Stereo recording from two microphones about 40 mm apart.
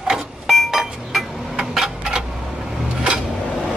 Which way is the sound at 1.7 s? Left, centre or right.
Centre.